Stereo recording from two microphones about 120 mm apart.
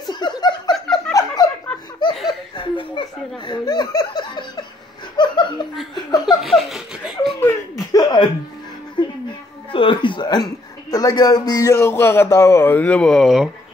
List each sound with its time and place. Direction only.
0.1 s chuckle: 35° left (ahead or behind)
0.7 s snicker: 5° left (ahead or behind)
1.1 s a sound: 30° left (ahead or behind)
2.2 s chuckle: 40° left (ahead or behind)
5.1 s laughter: 40° left (ahead or behind)
6.2 s laughter: centre (ahead or behind)
7.8 s chuckle: 35° left (ahead or behind)
9.0 s music: 40° left (ahead or behind)
9.7 s speech: 45° left (ahead or behind); by 13.5 s centre (ahead or behind)